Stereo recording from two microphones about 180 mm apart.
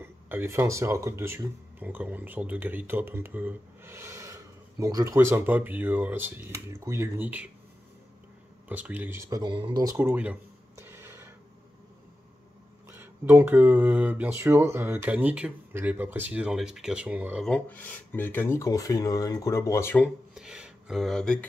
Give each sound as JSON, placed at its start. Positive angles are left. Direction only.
{"t": 0.0, "sound": "speech", "side_deg": -10}
{"t": 8.6, "sound": "speech", "side_deg": -10}
{"t": 12.9, "sound": "speech", "side_deg": -10}
{"t": 17.5, "sound": "speech", "side_deg": 10}
{"t": 20.3, "sound": "speech", "side_deg": -5}